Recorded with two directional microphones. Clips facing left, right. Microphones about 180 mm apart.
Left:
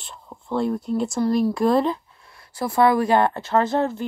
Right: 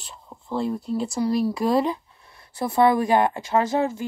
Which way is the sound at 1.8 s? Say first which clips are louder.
Left 2 dB; 20° right (ahead or behind).